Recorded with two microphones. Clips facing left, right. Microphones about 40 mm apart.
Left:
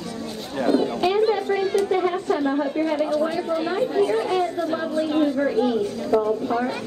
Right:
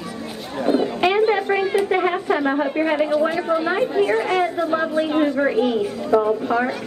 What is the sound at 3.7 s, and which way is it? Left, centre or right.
Speech, right.